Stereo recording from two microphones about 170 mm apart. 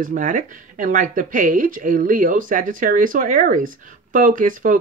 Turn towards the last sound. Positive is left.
turn(degrees=-50)  # may be behind; listen again after turning